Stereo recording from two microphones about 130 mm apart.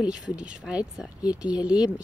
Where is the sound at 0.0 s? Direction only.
10° right (ahead or behind).